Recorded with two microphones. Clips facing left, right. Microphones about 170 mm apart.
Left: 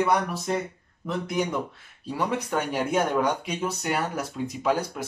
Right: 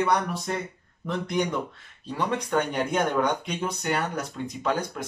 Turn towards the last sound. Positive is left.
turn(degrees=5)  # may be behind; listen again after turning